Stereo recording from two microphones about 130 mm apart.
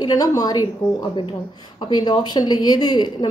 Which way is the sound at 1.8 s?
35° left (ahead or behind).